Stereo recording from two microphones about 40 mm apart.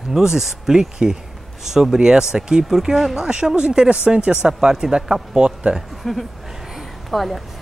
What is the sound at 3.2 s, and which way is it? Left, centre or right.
Speech, right.